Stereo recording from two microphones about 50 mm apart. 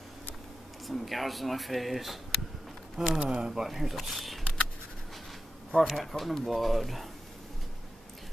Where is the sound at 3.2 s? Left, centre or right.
Centre.